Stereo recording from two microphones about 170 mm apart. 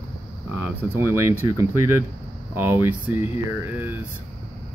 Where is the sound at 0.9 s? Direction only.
15° right (ahead or behind).